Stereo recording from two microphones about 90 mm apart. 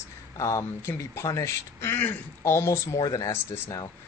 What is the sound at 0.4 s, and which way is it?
Speech, 35° left (ahead or behind).